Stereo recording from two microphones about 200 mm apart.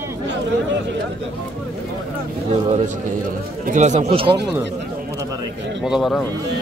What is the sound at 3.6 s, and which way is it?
Speech, 40° right (ahead or behind).